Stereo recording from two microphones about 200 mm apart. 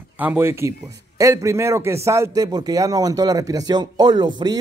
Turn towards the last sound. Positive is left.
turn(degrees=-20)  # may be behind; listen again after turning